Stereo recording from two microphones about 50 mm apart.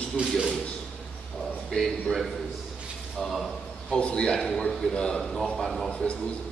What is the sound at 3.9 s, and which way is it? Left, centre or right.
Speech, centre.